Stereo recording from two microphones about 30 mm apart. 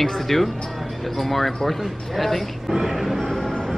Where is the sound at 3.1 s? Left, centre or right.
Centre.